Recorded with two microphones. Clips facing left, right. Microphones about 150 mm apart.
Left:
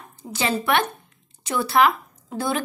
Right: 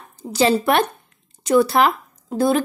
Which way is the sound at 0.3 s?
40° right (ahead or behind).